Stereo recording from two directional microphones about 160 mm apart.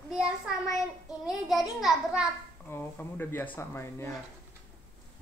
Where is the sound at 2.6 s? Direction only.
15° left (ahead or behind).